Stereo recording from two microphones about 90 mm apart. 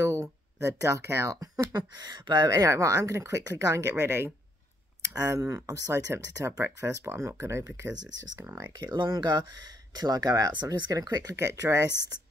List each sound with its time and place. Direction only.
0.0 s speech: 35° right (ahead or behind)
5.1 s speech: 40° right (ahead or behind)
8.6 s speech: 55° right (ahead or behind)
10.5 s speech: 55° right (ahead or behind)
10.9 s speech: 40° right (ahead or behind)